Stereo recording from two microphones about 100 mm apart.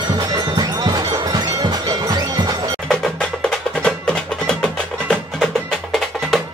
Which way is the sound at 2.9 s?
5° left (ahead or behind).